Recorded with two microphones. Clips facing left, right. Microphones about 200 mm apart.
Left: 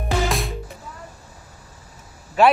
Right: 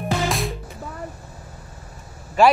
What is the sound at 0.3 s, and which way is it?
Music, centre (ahead or behind).